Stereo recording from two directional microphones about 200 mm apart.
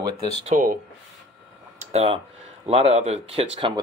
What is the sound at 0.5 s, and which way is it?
Speech, 40° right (ahead or behind).